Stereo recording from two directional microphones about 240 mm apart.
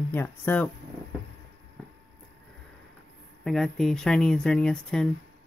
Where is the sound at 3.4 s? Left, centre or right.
Centre.